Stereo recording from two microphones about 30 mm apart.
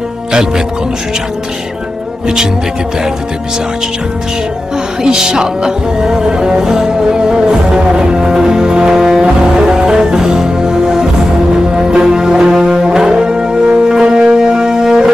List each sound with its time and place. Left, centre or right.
5.0 s music: right